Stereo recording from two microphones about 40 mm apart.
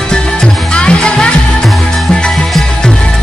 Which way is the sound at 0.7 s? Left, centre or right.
Left.